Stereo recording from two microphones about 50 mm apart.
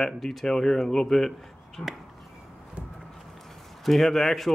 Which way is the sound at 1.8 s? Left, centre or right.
Left.